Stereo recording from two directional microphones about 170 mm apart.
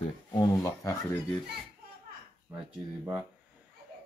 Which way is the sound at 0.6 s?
20° left (ahead or behind).